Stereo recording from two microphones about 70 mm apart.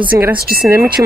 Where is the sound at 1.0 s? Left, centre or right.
Right.